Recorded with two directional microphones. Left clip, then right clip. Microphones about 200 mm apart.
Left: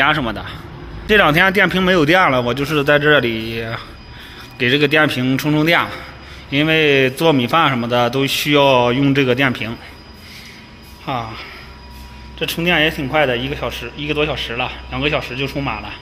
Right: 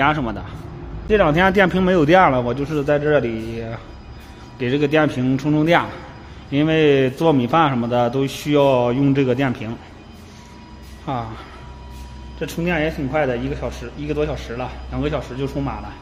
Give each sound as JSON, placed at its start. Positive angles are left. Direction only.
{"t": 0.0, "sound": "a man's voice", "side_deg": -5}
{"t": 1.4, "sound": "a man's voice", "side_deg": -10}
{"t": 11.1, "sound": "speech", "side_deg": -15}
{"t": 12.4, "sound": "a man's voice", "side_deg": 0}